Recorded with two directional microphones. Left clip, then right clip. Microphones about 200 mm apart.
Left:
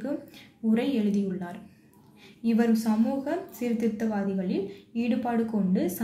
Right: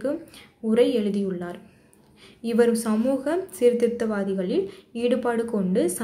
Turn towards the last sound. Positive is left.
turn(degrees=-35)  # may be behind; listen again after turning